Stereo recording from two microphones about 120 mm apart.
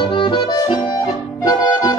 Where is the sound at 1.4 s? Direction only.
30° left (ahead or behind).